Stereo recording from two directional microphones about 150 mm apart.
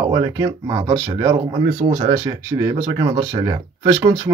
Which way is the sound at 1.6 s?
90° right.